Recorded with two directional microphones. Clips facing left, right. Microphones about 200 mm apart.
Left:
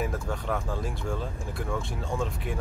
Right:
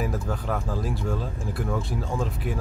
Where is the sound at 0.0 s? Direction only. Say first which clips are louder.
Right 2 dB; centre (ahead or behind).